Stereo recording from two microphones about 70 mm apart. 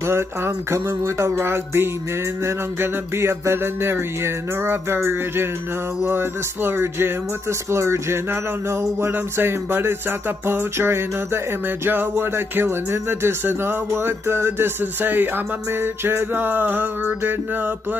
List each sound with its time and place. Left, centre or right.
0.0 s music: right